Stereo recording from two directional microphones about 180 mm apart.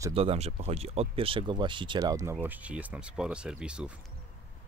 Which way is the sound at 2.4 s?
10° right (ahead or behind).